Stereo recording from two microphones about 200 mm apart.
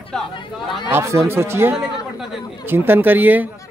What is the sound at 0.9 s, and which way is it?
Speech, 15° right (ahead or behind).